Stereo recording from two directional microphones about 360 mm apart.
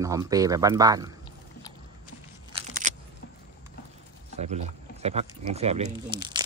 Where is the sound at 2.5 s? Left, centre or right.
Right.